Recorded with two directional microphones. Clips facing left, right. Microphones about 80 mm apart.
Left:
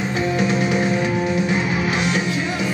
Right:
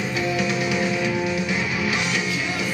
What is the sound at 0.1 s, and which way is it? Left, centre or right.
Music, left.